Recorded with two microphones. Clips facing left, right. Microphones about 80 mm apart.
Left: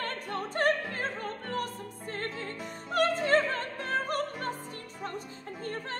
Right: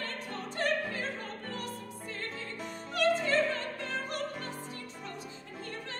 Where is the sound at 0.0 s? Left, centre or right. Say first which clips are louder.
Left 4 dB; left.